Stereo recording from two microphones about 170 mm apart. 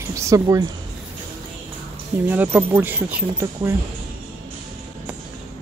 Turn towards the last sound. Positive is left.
turn(degrees=-10)  # may be behind; listen again after turning